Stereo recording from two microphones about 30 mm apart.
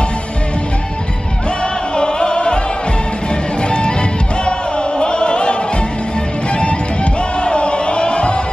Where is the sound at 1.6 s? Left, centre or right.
Left.